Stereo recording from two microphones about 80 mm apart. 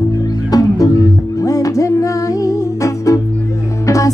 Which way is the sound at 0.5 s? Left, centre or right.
Left.